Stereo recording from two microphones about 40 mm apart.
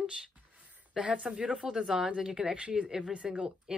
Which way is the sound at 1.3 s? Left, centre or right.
Right.